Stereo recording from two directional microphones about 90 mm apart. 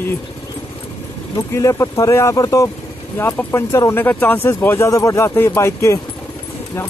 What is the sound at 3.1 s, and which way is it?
Speech, 25° left (ahead or behind).